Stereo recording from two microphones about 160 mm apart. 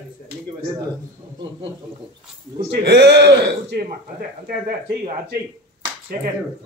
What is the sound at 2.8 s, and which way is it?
Speech, 90° right.